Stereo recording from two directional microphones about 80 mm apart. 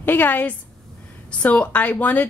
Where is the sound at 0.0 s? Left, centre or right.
Left.